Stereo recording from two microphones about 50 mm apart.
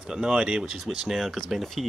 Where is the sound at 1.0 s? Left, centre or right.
Centre.